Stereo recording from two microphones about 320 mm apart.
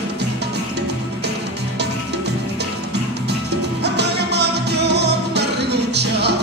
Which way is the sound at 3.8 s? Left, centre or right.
Right.